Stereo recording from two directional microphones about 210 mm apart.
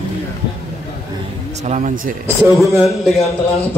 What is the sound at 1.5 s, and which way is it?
Speech, 35° right (ahead or behind).